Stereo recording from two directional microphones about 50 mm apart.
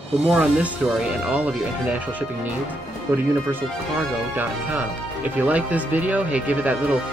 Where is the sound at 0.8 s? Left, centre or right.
Centre.